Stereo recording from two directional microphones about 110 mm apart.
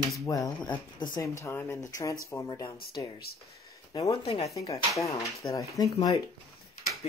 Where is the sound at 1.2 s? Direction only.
30° left (ahead or behind).